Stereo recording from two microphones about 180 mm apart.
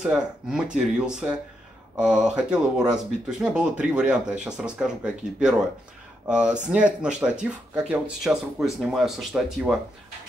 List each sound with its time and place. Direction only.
0.0 s speech: 5° right (ahead or behind)